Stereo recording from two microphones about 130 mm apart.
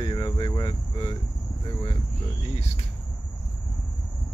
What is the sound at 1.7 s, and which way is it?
Speech, 40° left (ahead or behind).